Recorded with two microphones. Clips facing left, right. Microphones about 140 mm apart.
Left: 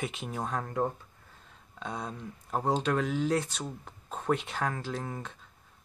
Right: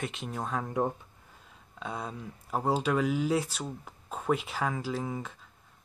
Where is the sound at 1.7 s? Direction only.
5° right (ahead or behind).